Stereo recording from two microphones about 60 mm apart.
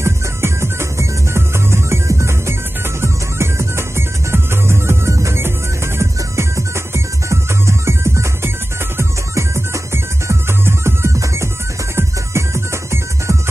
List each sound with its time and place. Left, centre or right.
0.0 s music: right